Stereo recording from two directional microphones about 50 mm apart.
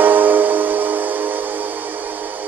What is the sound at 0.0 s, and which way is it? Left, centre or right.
Music, right.